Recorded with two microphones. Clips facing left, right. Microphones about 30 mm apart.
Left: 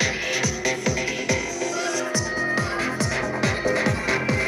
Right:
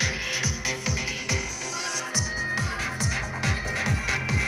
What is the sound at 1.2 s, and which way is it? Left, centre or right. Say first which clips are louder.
Music: left 6 dB; left.